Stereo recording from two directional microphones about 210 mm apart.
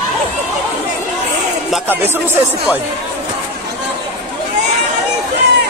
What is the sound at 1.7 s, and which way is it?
Speech, 10° right (ahead or behind).